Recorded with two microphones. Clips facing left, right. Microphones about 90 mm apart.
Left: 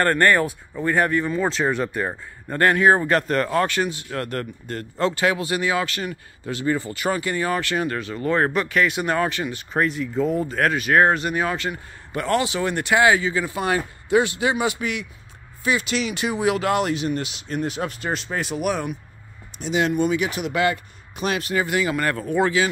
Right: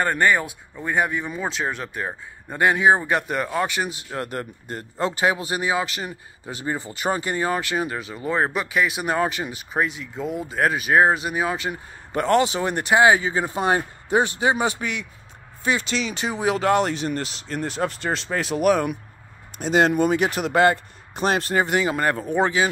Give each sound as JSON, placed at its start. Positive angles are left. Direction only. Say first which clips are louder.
{"t": 0.0, "sound": "speech", "louder": "left 2 dB", "side_deg": -5}
{"t": 2.5, "sound": "speech", "louder": "left 1 dB", "side_deg": -10}
{"t": 11.7, "sound": "speech", "louder": "right 3 dB", "side_deg": -30}
{"t": 18.6, "sound": "speech", "louder": "right 9 dB", "side_deg": -45}